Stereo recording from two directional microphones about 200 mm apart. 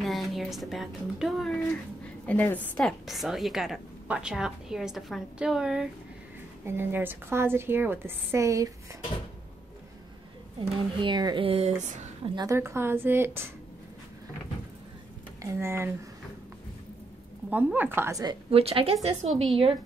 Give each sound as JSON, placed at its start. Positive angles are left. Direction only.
{"t": 0.0, "sound": "a woman's voice", "side_deg": 0}
{"t": 10.6, "sound": "speech", "side_deg": -25}
{"t": 12.4, "sound": "a woman's voice", "side_deg": -15}
{"t": 15.4, "sound": "a woman's voice", "side_deg": -10}
{"t": 17.5, "sound": "a woman's voice", "side_deg": -10}